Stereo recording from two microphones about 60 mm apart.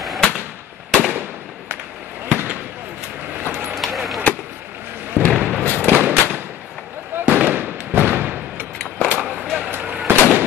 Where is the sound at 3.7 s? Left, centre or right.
Centre.